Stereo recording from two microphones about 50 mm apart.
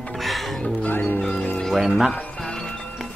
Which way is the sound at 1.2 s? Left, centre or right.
Centre.